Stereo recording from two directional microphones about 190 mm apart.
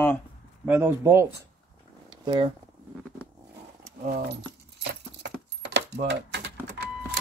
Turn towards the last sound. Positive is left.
turn(degrees=-65)  # may be behind; listen again after turning